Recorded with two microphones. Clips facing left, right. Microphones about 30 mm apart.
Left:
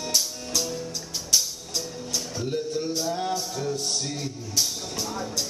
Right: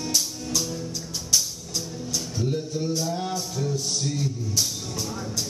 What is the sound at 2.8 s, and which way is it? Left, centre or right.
Music, centre.